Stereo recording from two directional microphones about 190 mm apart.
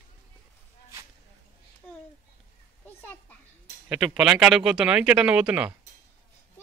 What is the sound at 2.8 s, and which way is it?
Children playing, 10° left (ahead or behind).